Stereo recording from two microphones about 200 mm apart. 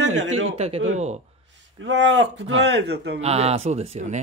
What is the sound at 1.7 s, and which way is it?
A man's voice, 65° right (ahead or behind).